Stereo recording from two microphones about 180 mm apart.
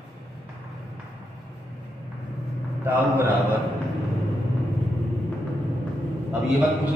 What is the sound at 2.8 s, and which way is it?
Speech, 10° right (ahead or behind).